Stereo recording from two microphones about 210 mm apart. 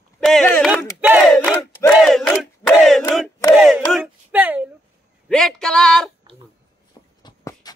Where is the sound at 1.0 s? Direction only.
5° right (ahead or behind).